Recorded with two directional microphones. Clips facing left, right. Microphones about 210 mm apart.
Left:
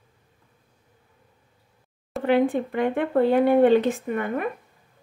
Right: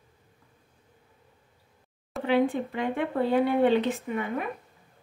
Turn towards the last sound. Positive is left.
turn(degrees=55)  # may be behind; listen again after turning